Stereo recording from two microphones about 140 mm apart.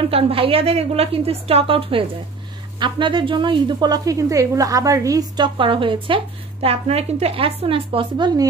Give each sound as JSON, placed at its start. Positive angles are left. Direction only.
{"t": 0.1, "sound": "a woman's voice", "side_deg": -40}
{"t": 5.6, "sound": "a woman's voice", "side_deg": -35}